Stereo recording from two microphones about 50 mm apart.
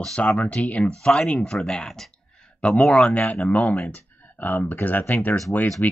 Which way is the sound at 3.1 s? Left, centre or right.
Left.